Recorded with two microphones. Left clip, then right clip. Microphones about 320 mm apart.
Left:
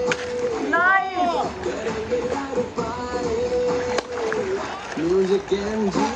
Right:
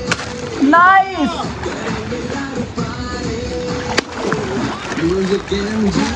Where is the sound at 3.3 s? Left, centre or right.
Left.